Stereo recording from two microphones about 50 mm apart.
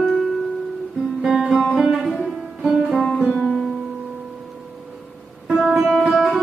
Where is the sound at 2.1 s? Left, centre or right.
Centre.